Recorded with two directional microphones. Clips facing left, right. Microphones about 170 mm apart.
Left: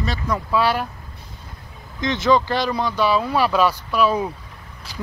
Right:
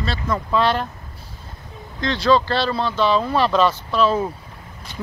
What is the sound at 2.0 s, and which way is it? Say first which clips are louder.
Speech: even; 20° left (ahead or behind).